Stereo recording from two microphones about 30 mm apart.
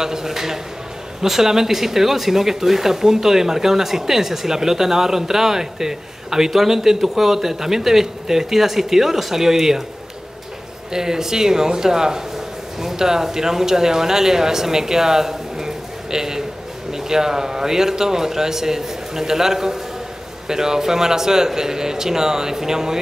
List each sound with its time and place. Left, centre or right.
0.0 s speech: centre
10.9 s a man's voice: centre